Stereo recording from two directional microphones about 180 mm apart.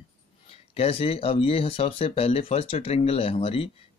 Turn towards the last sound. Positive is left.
turn(degrees=35)  # may be behind; listen again after turning